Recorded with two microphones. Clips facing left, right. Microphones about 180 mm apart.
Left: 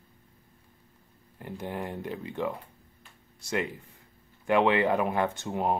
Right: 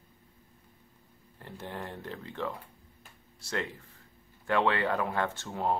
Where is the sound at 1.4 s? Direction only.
15° left (ahead or behind).